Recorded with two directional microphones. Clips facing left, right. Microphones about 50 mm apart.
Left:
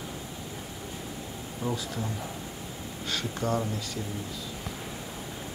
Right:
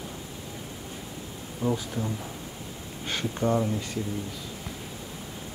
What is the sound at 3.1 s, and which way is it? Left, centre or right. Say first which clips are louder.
Speech: right 3 dB; right.